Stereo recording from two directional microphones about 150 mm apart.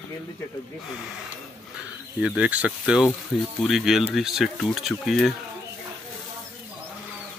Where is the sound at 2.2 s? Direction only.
5° right (ahead or behind).